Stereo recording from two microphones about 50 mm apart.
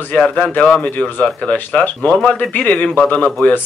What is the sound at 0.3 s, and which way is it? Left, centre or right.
Speech, left.